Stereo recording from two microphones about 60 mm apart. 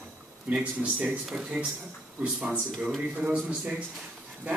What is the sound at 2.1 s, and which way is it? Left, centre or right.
Speech, right.